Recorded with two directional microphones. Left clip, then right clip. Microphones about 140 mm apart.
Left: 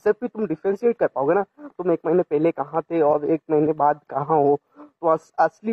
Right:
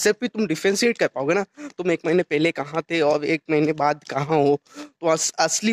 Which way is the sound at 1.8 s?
20° right (ahead or behind).